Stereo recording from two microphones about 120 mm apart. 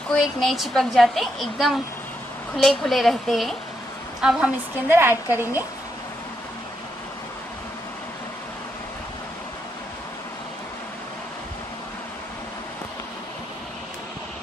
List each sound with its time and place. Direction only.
0.1 s a woman's voice: centre (ahead or behind)
4.8 s a woman's voice: 20° right (ahead or behind)